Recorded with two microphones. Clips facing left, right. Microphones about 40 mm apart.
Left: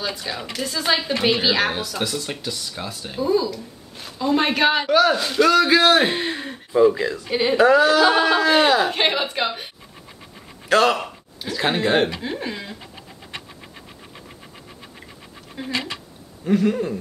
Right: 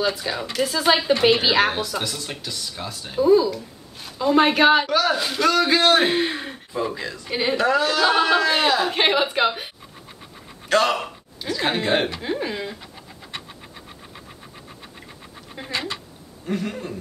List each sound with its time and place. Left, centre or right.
0.0 s speech: centre
6.9 s speech: centre
10.7 s speech: centre
15.6 s speech: centre
16.4 s speech: centre